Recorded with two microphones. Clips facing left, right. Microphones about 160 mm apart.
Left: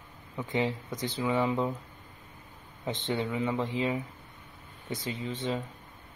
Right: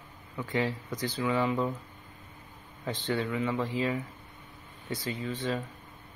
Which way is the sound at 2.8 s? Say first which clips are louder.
Even; 20° left (ahead or behind).